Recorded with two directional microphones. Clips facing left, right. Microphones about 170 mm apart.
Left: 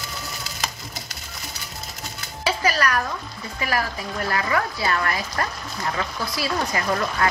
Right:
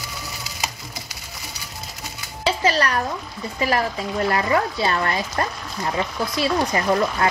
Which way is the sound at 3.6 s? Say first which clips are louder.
Right 4 dB; 25° right (ahead or behind).